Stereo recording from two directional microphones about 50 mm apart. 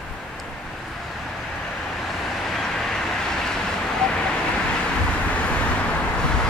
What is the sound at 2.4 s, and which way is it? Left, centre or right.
Vehicle, centre.